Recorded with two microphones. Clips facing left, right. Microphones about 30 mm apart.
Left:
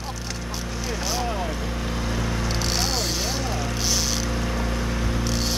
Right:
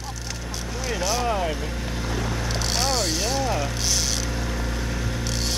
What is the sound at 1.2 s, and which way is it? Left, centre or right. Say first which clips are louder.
Vehicle: right 3 dB; centre.